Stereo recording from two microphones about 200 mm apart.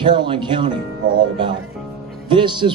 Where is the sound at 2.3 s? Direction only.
25° right (ahead or behind).